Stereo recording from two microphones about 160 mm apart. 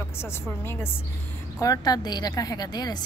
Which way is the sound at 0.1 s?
15° left (ahead or behind).